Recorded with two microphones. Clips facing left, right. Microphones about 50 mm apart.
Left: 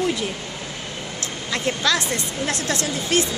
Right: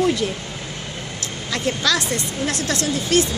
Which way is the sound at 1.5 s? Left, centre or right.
Left.